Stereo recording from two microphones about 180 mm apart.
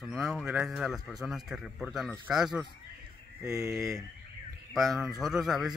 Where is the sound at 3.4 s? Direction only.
15° right (ahead or behind).